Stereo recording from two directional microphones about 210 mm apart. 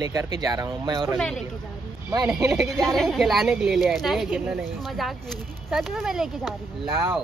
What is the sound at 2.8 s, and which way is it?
Speech, centre (ahead or behind).